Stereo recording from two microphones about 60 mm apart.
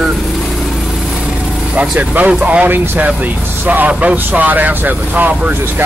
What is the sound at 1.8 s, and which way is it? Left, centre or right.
Speech, right.